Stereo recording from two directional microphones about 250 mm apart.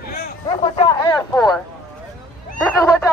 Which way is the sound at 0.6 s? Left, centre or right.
Left.